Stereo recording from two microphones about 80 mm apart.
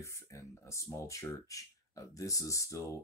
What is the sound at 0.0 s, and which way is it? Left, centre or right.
Speech, left.